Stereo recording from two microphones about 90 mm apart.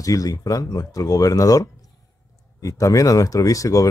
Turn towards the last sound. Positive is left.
turn(degrees=40)  # may be behind; listen again after turning